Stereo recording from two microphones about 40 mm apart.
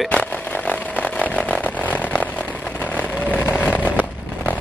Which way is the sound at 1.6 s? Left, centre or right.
Left.